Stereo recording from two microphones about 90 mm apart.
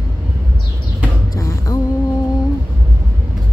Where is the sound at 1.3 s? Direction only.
35° left (ahead or behind).